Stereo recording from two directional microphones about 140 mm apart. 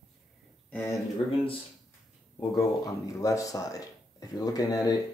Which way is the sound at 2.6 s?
25° left (ahead or behind).